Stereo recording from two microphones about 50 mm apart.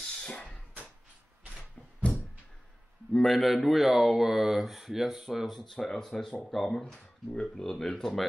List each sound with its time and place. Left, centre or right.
0.0 s a sound: centre
3.1 s speech: centre
5.6 s speech: centre
6.8 s speech: left
7.4 s speech: centre